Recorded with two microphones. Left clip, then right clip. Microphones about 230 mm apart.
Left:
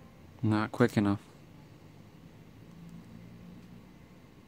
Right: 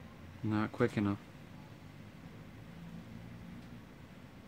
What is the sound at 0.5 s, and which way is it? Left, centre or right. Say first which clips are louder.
Speech: left 5 dB; left.